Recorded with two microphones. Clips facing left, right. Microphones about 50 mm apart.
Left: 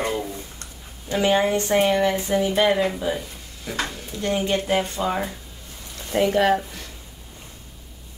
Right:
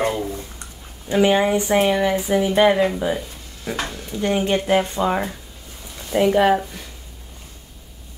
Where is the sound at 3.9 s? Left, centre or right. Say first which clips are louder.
Right 2 dB; right.